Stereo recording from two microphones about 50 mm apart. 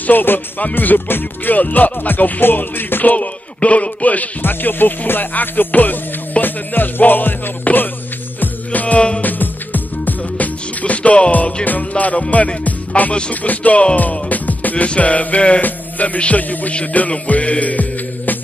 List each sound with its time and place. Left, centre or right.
0.0 s music: left
4.4 s music: left
9.2 s music: left